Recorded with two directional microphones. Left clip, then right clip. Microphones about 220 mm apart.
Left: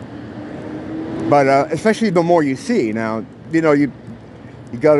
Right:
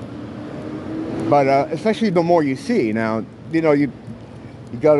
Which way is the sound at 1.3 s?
10° left (ahead or behind).